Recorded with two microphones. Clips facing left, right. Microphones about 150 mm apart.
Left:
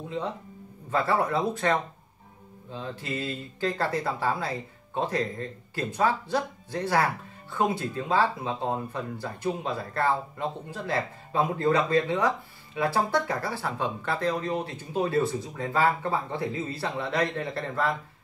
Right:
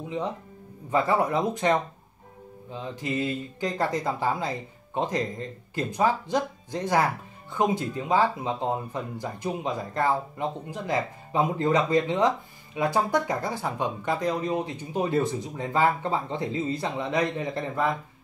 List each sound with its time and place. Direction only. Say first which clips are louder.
0.9 s speech: right 2 dB; 15° right (ahead or behind)